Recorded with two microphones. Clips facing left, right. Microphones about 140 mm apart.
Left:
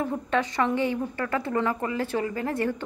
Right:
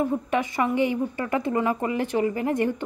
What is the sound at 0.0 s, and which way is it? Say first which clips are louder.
A woman's voice: right 2 dB; 10° right (ahead or behind).